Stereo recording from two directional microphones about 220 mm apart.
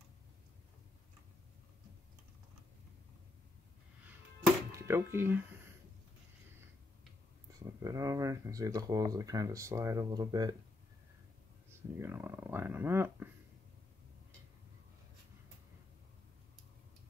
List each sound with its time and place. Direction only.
4.7 s speech: 10° right (ahead or behind)
7.5 s speech: 15° right (ahead or behind)
12.0 s speech: 10° right (ahead or behind)